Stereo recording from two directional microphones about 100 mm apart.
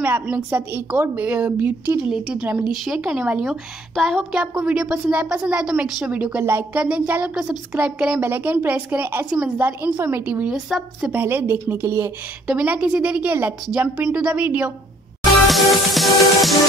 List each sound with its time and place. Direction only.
0.5 s a woman's voice: 20° right (ahead or behind)
3.9 s music: centre (ahead or behind)
4.3 s a woman's voice: 10° right (ahead or behind)
6.3 s a woman's voice: 20° right (ahead or behind)
10.5 s music: 5° right (ahead or behind)
11.1 s a woman's voice: 20° right (ahead or behind)
12.4 s a woman's voice: 15° right (ahead or behind)
15.4 s music: centre (ahead or behind)